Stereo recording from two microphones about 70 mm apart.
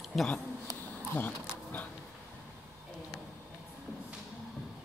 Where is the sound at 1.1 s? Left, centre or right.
Left.